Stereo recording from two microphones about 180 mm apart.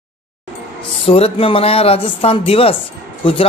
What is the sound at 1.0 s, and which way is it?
A woman's voice, 30° left (ahead or behind).